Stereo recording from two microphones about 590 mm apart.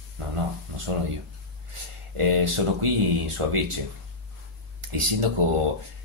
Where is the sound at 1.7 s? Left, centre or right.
Right.